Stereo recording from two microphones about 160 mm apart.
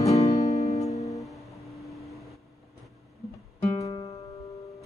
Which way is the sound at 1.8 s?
Centre (ahead or behind).